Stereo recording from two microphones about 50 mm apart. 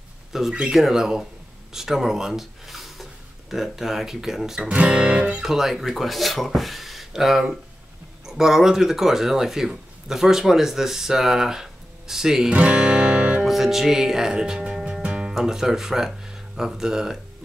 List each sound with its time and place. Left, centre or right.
0.3 s a man's voice: centre
4.7 s music: right
5.4 s a man's voice: centre
12.5 s music: right
13.5 s speech: centre
14.9 s music: right
15.3 s a man's voice: centre